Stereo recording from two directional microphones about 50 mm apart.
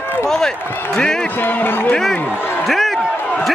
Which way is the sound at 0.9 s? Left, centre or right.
Centre.